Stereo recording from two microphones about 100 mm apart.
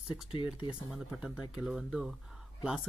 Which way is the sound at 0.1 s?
60° left (ahead or behind).